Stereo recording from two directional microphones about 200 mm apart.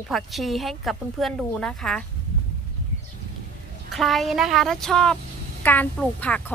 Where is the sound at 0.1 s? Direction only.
Centre (ahead or behind).